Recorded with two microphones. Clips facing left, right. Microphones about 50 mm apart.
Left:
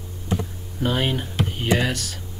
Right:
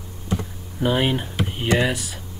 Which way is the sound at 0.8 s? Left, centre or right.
Centre.